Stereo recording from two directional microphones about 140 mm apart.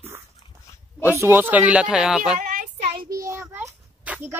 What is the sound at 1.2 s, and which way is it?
Speech, 15° right (ahead or behind).